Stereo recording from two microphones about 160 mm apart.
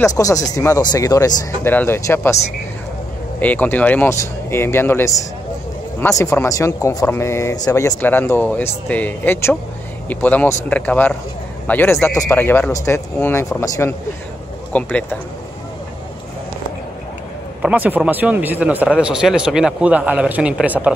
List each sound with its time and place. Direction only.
0.1 s speech: 20° left (ahead or behind)
3.3 s speech: 10° left (ahead or behind)
17.6 s speech: 10° right (ahead or behind)